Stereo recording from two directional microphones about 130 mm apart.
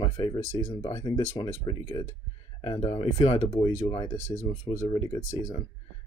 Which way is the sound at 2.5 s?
40° left (ahead or behind).